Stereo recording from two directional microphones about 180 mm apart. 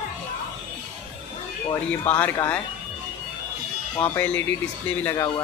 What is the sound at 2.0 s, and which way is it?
Speech, 10° left (ahead or behind).